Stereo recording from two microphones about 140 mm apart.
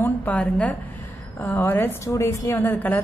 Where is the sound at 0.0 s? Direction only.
10° left (ahead or behind).